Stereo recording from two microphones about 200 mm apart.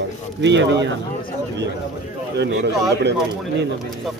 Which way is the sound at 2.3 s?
60° right (ahead or behind).